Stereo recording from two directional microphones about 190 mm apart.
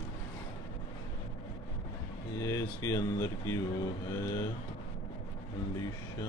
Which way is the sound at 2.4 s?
15° left (ahead or behind).